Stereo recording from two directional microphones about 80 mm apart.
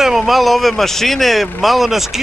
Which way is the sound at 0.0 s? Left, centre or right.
Centre.